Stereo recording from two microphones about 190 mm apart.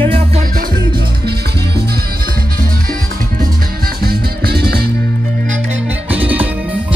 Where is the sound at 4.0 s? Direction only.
55° right (ahead or behind).